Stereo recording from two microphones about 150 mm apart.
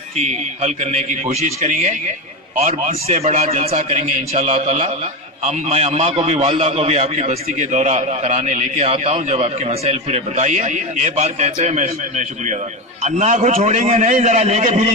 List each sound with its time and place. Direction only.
0.2 s a man's voice: 50° right (ahead or behind)